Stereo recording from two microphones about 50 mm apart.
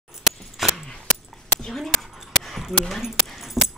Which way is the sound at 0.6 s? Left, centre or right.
Centre.